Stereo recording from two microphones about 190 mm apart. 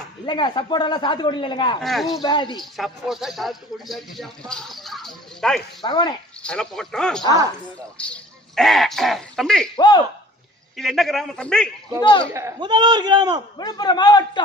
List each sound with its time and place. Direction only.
0.3 s a man's voice: 25° left (ahead or behind)
1.8 s speech: centre (ahead or behind)
2.2 s a man's voice: 25° left (ahead or behind)
2.6 s speech: centre (ahead or behind)
4.5 s a sound: centre (ahead or behind)
5.8 s a man's voice: 25° left (ahead or behind)
6.4 s speech: 5° left (ahead or behind)
9.8 s a man's voice: 20° left (ahead or behind)
10.8 s speech: centre (ahead or behind)
12.0 s a man's voice: 25° left (ahead or behind)
12.3 s a man's voice: 15° right (ahead or behind)
13.6 s a man's voice: 20° left (ahead or behind)